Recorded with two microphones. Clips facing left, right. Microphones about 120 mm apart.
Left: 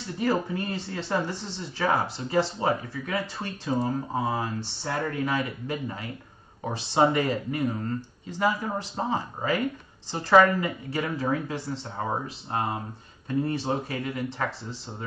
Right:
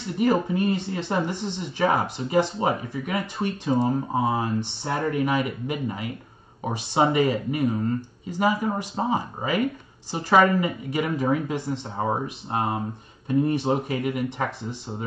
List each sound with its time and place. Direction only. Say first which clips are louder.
0.2 s speech: right 5 dB; 20° right (ahead or behind)